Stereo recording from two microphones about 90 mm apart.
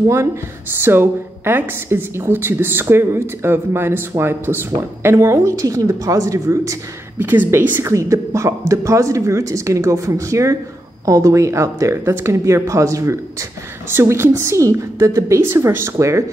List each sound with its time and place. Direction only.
0.8 s a woman's voice: 25° right (ahead or behind)
7.2 s speech: 20° right (ahead or behind)